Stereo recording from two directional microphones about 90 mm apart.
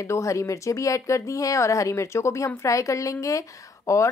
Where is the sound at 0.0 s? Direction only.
35° left (ahead or behind).